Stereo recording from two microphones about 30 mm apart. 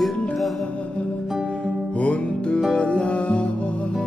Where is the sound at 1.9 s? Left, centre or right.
Left.